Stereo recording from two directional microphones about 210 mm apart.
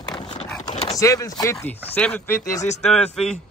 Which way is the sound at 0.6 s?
30° left (ahead or behind).